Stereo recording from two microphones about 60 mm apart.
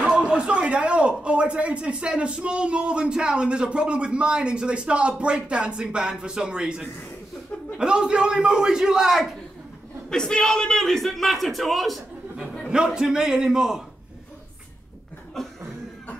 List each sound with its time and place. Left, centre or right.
0.0 s speech: centre
10.0 s a man's voice: centre
12.6 s speech: centre
15.4 s cough: centre